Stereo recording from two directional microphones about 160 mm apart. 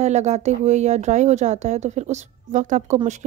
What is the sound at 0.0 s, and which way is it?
A woman's voice, 45° right (ahead or behind).